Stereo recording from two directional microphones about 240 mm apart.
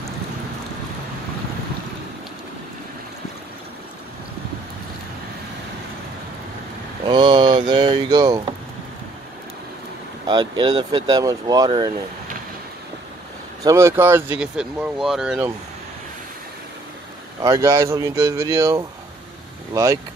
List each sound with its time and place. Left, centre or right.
7.1 s a sound: centre
10.2 s speech: centre
13.7 s speech: centre
17.4 s speech: centre